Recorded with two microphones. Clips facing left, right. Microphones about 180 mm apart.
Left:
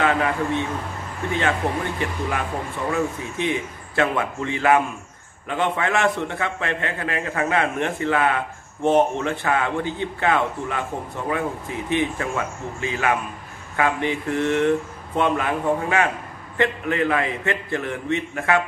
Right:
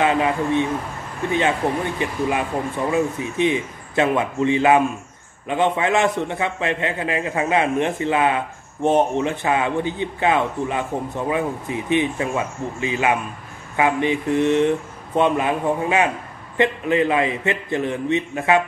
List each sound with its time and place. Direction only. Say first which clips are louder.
0.0 s a man's voice: right 2 dB; 20° right (ahead or behind)
2.0 s a man's voice: right 4 dB; 20° right (ahead or behind)